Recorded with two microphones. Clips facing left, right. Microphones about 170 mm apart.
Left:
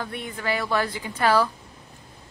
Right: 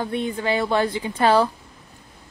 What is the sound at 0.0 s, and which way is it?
Speech, 25° right (ahead or behind).